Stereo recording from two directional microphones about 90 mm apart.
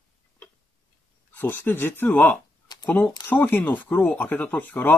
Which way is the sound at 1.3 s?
25° left (ahead or behind).